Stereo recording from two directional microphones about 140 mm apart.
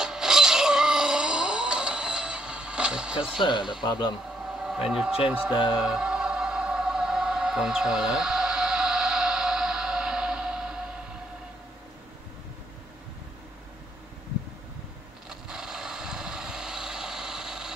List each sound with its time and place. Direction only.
0.0 s a sound: 5° right (ahead or behind)
3.3 s speech: 35° left (ahead or behind)
4.5 s a sound: 5° right (ahead or behind)
5.3 s speech: 10° right (ahead or behind)
5.8 s music: 5° right (ahead or behind)
15.2 s vehicle: 5° right (ahead or behind)